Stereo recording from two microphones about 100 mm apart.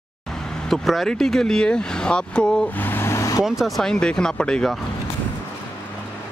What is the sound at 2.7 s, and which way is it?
Vehicle, 20° left (ahead or behind).